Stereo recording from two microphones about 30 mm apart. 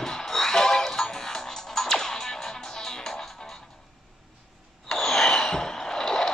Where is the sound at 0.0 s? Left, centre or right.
Centre.